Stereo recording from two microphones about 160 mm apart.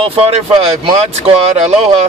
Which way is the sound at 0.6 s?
40° right (ahead or behind).